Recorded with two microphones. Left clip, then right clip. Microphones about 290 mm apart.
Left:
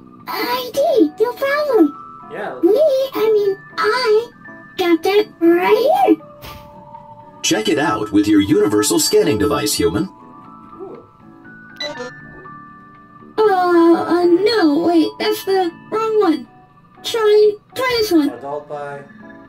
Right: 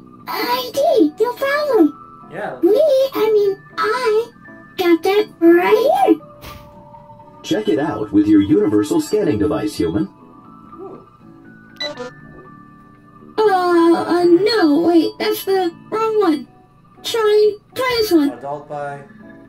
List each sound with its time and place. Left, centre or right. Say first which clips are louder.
0.3 s a child's voice: right 1 dB; centre
3.7 s a child's voice: left 3 dB; centre
7.4 s speech: left 2 dB; left
11.8 s music: even; centre
13.4 s speech: left 1 dB; centre